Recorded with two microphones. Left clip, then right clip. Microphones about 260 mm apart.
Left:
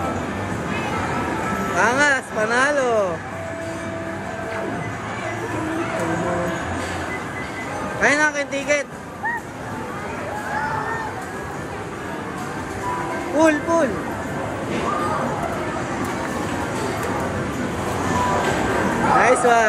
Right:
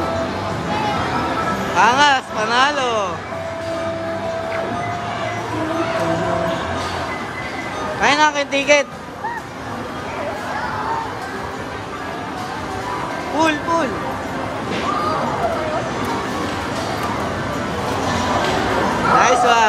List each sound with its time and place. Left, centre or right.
1.8 s speech: centre
8.0 s a man's voice: centre
13.4 s speech: centre
19.1 s speech: centre